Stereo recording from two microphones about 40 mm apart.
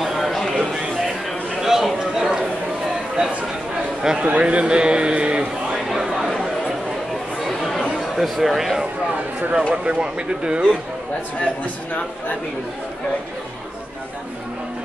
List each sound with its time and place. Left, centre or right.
0.0 s a sound: centre
1.6 s a sound: centre
4.0 s a man's voice: centre
4.3 s a man's voice: right
5.9 s chatter: centre
7.3 s chatter: centre
8.4 s speech: centre
9.5 s a man's voice: right
11.4 s speech: left